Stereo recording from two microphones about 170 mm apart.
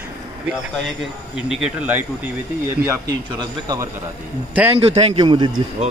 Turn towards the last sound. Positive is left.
turn(degrees=-30)  # may be behind; listen again after turning